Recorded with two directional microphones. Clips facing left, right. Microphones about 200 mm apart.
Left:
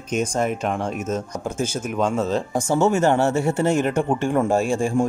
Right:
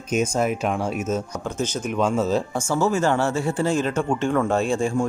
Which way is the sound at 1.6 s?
Centre (ahead or behind).